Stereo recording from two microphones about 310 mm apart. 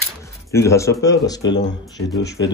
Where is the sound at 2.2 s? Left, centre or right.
Left.